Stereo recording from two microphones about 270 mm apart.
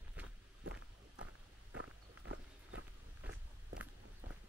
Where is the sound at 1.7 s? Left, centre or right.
Right.